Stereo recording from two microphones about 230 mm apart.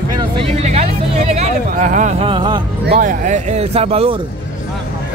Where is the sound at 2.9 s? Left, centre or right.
Right.